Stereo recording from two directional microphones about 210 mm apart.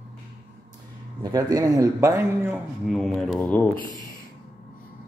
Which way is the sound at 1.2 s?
20° right (ahead or behind).